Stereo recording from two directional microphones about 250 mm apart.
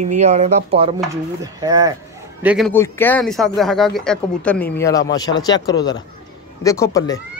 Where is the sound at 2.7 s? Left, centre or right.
Centre.